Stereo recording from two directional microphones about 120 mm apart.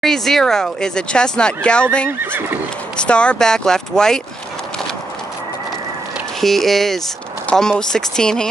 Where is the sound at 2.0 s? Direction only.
15° right (ahead or behind).